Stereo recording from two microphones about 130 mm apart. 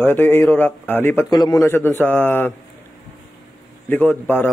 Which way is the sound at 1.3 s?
30° left (ahead or behind).